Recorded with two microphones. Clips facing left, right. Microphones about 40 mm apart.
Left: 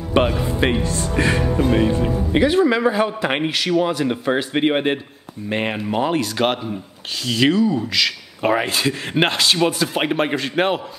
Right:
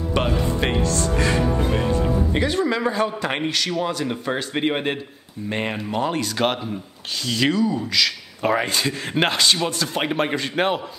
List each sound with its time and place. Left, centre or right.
0.1 s a man's voice: centre
6.1 s a man's voice: centre